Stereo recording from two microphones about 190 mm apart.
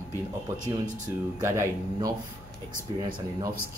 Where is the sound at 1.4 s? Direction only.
15° right (ahead or behind).